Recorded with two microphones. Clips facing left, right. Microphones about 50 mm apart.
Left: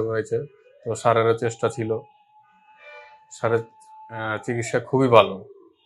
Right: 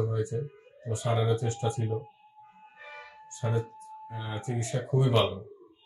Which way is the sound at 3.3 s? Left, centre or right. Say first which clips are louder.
Left 10 dB; left.